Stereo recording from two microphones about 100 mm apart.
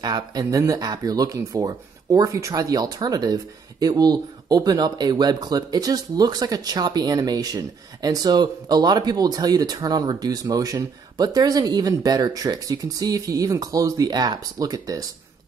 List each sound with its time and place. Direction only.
0.0 s speech: 45° right (ahead or behind)